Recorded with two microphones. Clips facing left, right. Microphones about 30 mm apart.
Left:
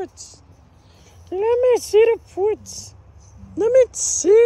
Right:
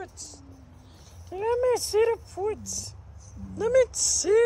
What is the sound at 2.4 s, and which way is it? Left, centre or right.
Speech, left.